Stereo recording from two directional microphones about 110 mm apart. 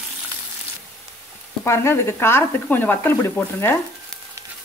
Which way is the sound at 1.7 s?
25° left (ahead or behind).